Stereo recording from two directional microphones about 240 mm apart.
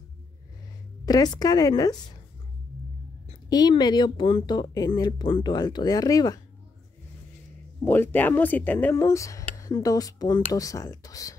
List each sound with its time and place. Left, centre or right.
1.0 s speech: centre
3.3 s speech: centre
7.8 s speech: centre